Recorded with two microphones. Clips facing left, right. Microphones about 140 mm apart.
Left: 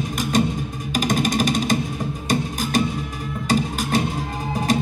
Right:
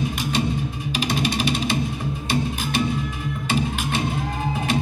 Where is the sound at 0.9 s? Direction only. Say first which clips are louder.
Left 4 dB; 45° left (ahead or behind).